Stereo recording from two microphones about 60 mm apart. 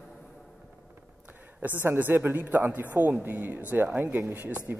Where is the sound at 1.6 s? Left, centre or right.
Right.